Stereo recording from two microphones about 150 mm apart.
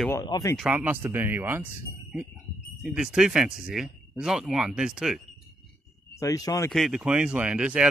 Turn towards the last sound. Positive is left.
turn(degrees=-5)  # may be behind; listen again after turning